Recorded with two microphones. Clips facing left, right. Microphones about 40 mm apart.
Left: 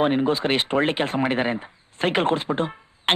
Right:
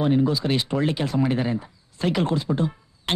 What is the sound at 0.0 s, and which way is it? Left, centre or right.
Speech, left.